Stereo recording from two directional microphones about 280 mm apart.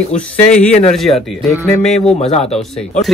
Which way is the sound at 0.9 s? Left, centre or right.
Centre.